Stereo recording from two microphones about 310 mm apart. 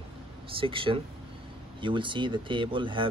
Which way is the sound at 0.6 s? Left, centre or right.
Centre.